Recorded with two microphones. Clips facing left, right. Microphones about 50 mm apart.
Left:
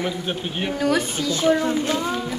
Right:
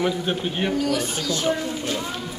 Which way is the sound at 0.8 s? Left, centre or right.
Left.